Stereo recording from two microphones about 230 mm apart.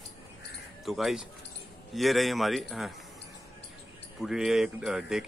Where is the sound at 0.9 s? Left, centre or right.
Centre.